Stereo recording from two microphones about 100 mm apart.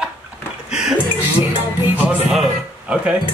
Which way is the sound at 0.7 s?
10° right (ahead or behind).